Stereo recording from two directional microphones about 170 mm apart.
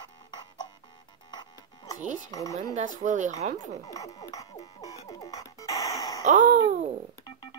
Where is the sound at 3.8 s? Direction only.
20° left (ahead or behind).